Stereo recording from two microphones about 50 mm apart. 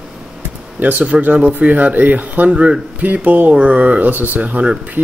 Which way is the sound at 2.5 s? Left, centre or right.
Right.